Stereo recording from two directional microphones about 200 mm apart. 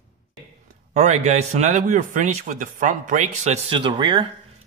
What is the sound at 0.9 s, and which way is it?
Speech, 35° right (ahead or behind).